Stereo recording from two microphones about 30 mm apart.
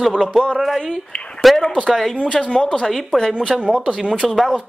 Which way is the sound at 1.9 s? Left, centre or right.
Centre.